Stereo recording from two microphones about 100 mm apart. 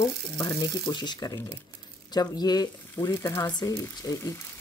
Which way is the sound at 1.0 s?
45° left (ahead or behind).